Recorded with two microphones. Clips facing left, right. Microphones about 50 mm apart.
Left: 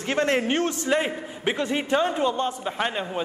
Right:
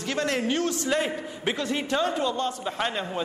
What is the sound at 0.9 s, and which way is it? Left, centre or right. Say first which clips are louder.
Speech: left 2 dB; left.